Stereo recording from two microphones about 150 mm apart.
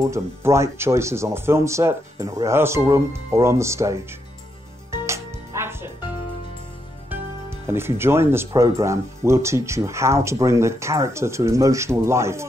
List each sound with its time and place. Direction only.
0.0 s speech: 20° right (ahead or behind)
4.9 s music: 20° right (ahead or behind)
7.1 s speech: 15° right (ahead or behind)